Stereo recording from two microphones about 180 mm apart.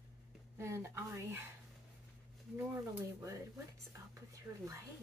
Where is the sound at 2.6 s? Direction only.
15° right (ahead or behind).